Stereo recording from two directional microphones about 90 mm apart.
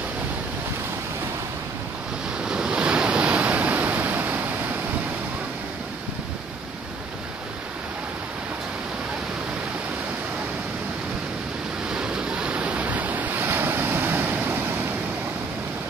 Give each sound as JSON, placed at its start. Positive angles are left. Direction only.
{"t": 2.4, "sound": "waves", "side_deg": -10}
{"t": 11.9, "sound": "waves", "side_deg": -10}